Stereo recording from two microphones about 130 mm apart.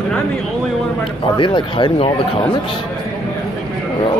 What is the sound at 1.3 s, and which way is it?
Speech, 35° left (ahead or behind).